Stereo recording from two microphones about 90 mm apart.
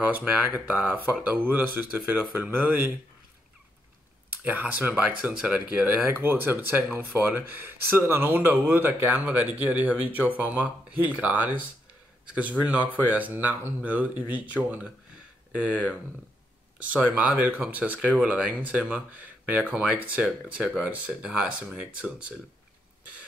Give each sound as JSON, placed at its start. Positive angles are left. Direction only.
{"t": 0.0, "sound": "speech", "side_deg": -15}
{"t": 4.3, "sound": "speech", "side_deg": -20}
{"t": 16.9, "sound": "speech", "side_deg": -15}